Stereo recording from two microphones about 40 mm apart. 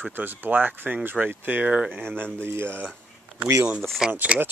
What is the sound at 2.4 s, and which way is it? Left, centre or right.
Speech, right.